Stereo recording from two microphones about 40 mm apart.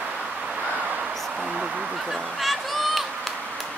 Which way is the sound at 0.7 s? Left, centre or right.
Right.